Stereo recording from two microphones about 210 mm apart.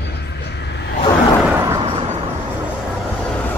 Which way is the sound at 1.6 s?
15° right (ahead or behind).